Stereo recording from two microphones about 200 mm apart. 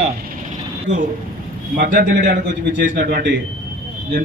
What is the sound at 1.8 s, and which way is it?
A man's voice, 55° right (ahead or behind).